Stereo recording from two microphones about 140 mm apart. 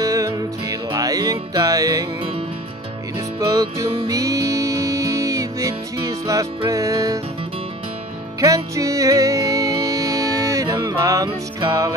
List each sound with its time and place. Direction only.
0.0 s music: 25° right (ahead or behind)
3.3 s music: 25° right (ahead or behind)
8.4 s music: 25° right (ahead or behind)